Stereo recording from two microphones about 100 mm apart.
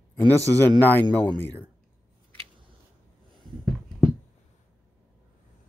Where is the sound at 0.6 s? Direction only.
20° left (ahead or behind).